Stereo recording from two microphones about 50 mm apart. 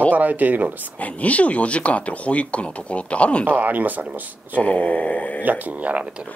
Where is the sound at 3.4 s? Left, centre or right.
Right.